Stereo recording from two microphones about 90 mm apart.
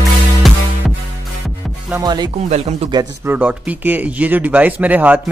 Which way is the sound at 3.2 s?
20° right (ahead or behind).